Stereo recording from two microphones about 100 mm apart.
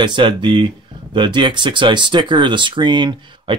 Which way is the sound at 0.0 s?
55° right (ahead or behind).